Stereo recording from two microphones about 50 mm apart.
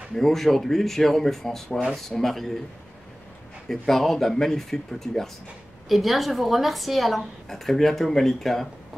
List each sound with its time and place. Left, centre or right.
0.1 s a woman's voice: centre
3.6 s a woman's voice: centre